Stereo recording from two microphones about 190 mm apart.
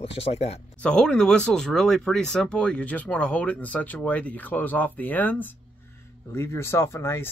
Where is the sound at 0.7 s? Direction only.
5° left (ahead or behind).